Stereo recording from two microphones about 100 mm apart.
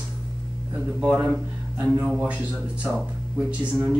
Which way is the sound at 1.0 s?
10° right (ahead or behind).